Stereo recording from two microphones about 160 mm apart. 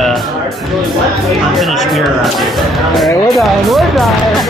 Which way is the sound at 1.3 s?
Centre (ahead or behind).